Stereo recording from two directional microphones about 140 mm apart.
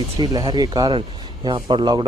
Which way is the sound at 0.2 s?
30° right (ahead or behind).